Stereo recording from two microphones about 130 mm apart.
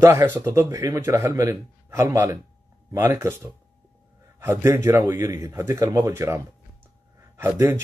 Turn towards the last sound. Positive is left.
turn(degrees=-20)  # may be behind; listen again after turning